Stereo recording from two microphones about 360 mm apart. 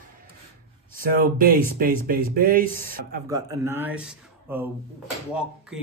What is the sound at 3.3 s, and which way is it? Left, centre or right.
Speech, centre.